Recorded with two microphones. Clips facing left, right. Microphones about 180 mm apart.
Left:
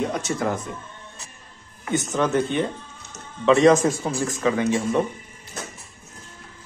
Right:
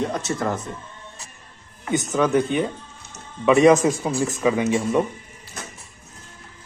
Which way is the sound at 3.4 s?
15° right (ahead or behind).